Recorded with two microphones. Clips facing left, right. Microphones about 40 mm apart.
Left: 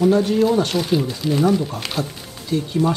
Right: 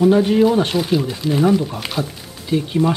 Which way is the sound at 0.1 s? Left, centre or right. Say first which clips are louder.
Right 3 dB; right.